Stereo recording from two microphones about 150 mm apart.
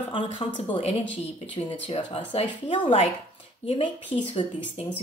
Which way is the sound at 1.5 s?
35° left (ahead or behind).